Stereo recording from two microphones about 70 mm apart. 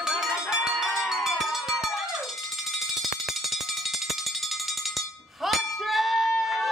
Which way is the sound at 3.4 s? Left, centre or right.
Centre.